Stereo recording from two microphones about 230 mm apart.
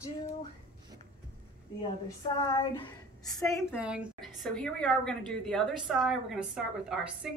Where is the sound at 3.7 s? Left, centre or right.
Centre.